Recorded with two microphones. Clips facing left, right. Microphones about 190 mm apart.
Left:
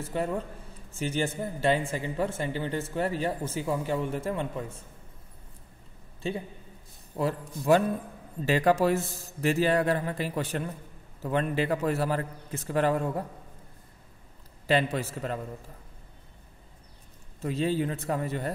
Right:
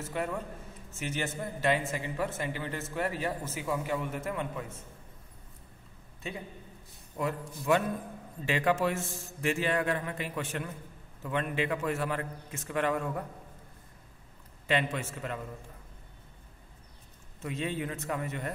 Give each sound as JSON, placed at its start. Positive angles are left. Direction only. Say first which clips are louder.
{"t": 0.0, "sound": "speech", "louder": "left 4 dB", "side_deg": 30}
{"t": 6.2, "sound": "speech", "louder": "left 7 dB", "side_deg": 30}
{"t": 14.7, "sound": "speech", "louder": "left 4 dB", "side_deg": 35}
{"t": 17.4, "sound": "speech", "louder": "left 6 dB", "side_deg": 35}